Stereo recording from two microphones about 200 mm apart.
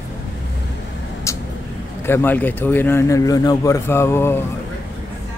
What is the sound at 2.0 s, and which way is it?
Speech, 10° left (ahead or behind).